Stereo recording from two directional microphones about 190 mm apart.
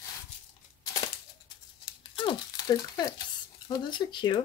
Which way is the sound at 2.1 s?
25° left (ahead or behind).